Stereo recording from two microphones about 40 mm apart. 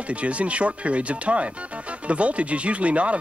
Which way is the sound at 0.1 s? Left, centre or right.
Right.